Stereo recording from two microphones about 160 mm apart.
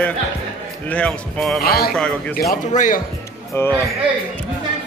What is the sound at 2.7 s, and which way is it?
Speech, 50° left (ahead or behind).